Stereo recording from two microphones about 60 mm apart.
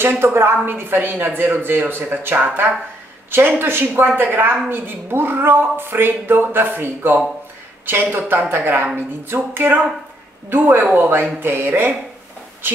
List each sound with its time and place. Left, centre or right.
0.2 s a woman's voice: right